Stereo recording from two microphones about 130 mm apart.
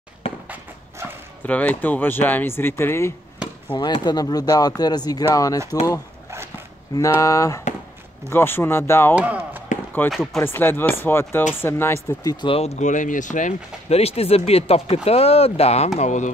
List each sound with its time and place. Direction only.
0.2 s a sound: 50° left (ahead or behind)
1.4 s speech: 10° left (ahead or behind)
3.7 s speech: 35° left (ahead or behind)
7.0 s speech: 25° left (ahead or behind)
9.1 s speech: 10° right (ahead or behind)
10.0 s speech: 15° left (ahead or behind)
12.4 s speech: 50° left (ahead or behind); by 13.9 s 75° left (ahead or behind)
13.9 s speech: 50° left (ahead or behind)
16.0 s speech: 65° left (ahead or behind)